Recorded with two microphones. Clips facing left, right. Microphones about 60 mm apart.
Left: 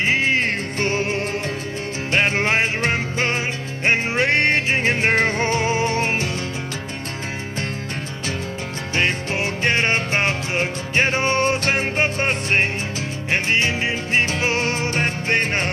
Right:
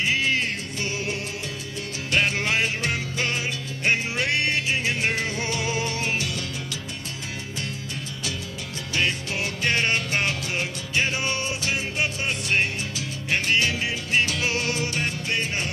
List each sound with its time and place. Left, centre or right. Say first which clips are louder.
0.0 s music: left 5 dB; left
8.9 s music: left 4 dB; left